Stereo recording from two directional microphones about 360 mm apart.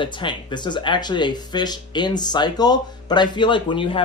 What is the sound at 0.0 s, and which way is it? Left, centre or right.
Speech, centre.